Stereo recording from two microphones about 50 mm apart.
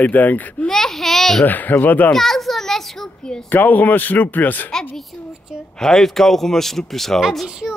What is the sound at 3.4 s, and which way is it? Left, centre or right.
Speech, left.